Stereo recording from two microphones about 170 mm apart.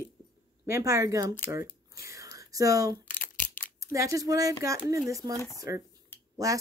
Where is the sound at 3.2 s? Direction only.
50° left (ahead or behind).